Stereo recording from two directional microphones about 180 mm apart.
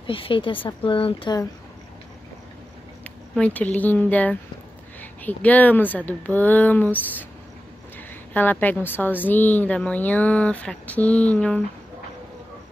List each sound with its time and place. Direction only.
0.0 s speech: 30° left (ahead or behind)
3.0 s a woman's voice: 10° left (ahead or behind)
8.3 s a woman's voice: 10° left (ahead or behind)